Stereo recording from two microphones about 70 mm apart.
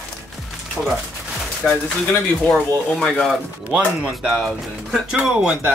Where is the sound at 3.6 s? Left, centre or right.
Centre.